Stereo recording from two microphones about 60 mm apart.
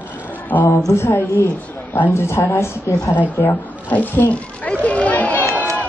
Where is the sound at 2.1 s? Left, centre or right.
Left.